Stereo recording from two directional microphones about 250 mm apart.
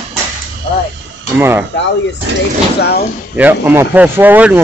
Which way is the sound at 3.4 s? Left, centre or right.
Centre.